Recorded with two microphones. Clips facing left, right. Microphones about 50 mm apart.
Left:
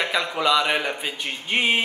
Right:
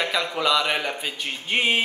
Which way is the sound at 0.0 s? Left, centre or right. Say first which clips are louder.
Left 1 dB; centre.